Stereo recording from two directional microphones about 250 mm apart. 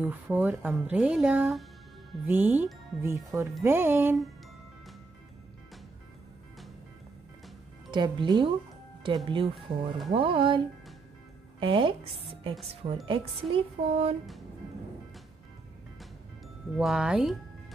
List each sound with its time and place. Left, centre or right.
0.0 s speech: centre
7.9 s speech: centre
9.6 s speech: centre
10.1 s speech: right
11.6 s speech: right
16.7 s speech: centre